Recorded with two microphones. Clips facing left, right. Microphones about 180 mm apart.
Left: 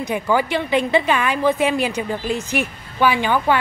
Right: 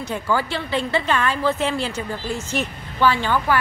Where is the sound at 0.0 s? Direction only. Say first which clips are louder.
Left 4 dB; 15° left (ahead or behind).